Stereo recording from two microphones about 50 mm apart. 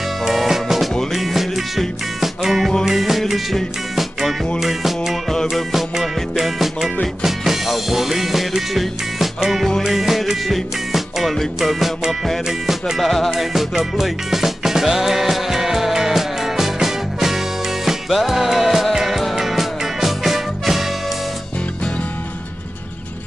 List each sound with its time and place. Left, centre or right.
0.2 s music: centre